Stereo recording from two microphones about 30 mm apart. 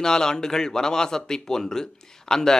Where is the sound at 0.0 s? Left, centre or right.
Left.